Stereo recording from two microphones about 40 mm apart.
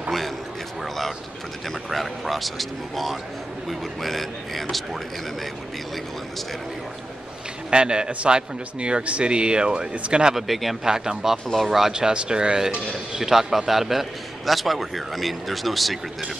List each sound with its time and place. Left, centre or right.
1.9 s a man's voice: centre
7.7 s speech: right
10.3 s a man's voice: centre
10.8 s speech: centre
11.9 s a man's voice: centre